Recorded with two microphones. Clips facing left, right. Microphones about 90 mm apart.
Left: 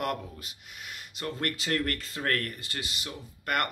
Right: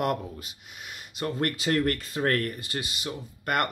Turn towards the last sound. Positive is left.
turn(degrees=-10)  # may be behind; listen again after turning